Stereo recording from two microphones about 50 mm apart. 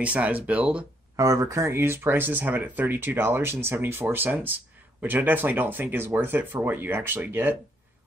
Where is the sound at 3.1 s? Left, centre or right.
Right.